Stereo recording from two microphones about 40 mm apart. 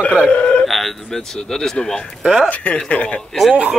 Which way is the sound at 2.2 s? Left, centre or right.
Centre.